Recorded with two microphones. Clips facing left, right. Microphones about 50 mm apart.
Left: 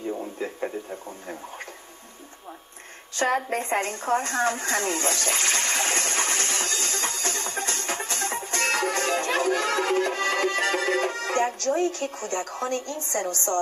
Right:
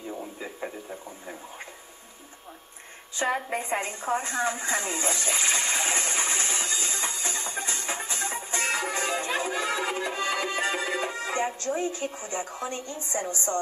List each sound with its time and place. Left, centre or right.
0.4 s radio: centre
3.2 s a woman's voice: left
4.2 s a sound: left